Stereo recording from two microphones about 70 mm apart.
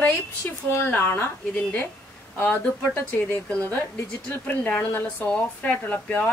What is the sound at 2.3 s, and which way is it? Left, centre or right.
Speech, left.